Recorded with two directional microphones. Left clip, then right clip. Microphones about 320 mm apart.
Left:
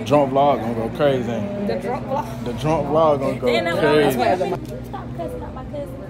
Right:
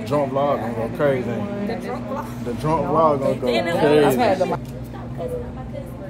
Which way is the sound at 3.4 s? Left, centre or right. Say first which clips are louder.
Left 1 dB; centre.